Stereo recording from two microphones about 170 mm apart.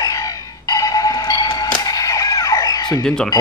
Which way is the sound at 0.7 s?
20° left (ahead or behind).